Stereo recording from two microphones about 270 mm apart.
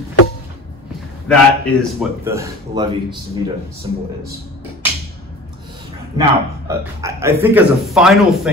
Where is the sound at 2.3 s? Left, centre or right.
Centre.